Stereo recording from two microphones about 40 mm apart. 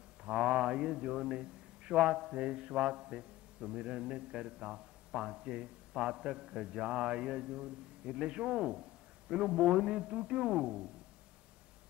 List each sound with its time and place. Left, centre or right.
0.2 s a man's voice: right
9.4 s a man's voice: right
10.5 s a man's voice: centre